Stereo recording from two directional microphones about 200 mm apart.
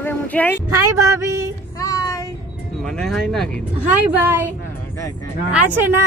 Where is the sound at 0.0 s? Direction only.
10° left (ahead or behind).